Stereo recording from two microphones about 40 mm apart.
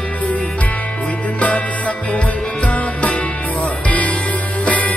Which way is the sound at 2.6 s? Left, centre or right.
Left.